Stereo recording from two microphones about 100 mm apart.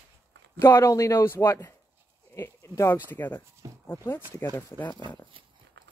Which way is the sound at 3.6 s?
35° right (ahead or behind).